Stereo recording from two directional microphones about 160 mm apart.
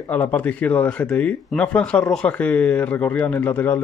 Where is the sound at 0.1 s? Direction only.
10° left (ahead or behind).